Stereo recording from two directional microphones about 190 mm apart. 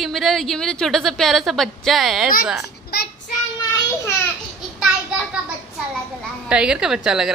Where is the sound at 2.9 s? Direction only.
55° left (ahead or behind).